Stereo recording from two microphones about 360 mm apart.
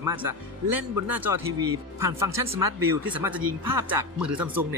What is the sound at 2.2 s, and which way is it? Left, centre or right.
Speech, centre.